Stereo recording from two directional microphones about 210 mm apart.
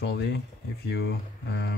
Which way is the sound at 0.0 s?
55° left (ahead or behind).